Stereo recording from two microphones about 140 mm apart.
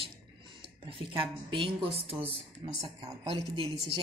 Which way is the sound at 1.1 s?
35° right (ahead or behind).